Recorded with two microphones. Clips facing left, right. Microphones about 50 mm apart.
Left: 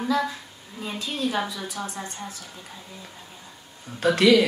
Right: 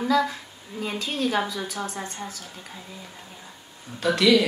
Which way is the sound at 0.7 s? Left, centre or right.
Right.